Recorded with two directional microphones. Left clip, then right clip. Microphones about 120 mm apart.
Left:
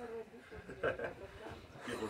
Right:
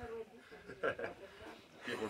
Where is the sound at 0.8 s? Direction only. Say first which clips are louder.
Left 1 dB; 5° right (ahead or behind).